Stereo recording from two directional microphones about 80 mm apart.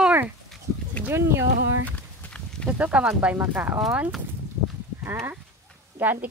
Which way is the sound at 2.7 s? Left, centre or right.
Centre.